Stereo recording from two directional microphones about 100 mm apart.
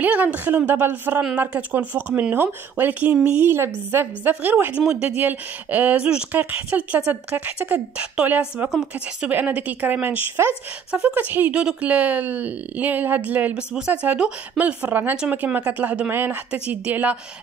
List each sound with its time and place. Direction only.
0.0 s a woman's voice: 15° right (ahead or behind)
8.6 s speech: 5° right (ahead or behind)
9.3 s a woman's voice: 15° right (ahead or behind)